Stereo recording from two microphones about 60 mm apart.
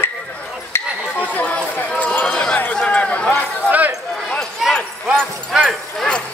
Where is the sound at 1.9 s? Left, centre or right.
Left.